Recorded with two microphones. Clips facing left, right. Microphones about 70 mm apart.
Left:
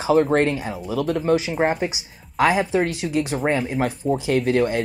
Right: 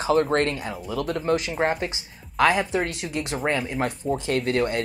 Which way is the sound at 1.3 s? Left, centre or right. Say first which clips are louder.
Left 3 dB; centre.